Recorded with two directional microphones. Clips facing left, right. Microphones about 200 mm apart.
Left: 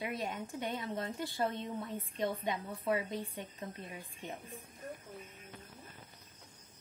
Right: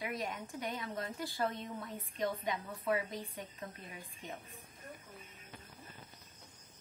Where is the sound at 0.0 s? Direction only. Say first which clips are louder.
Left 2 dB; 25° left (ahead or behind).